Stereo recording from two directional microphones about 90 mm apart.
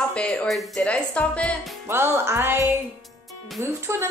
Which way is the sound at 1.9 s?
25° right (ahead or behind).